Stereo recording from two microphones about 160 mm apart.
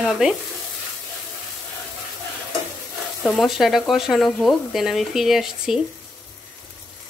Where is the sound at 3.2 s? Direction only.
Centre (ahead or behind).